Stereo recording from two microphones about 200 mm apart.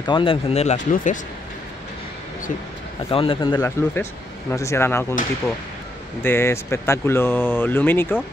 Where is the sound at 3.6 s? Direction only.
10° left (ahead or behind).